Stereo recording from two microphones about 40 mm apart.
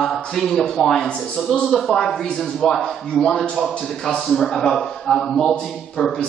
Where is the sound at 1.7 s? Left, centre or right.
Centre.